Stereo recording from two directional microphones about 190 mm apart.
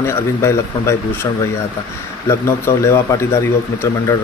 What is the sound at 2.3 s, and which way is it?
Speech, 15° left (ahead or behind).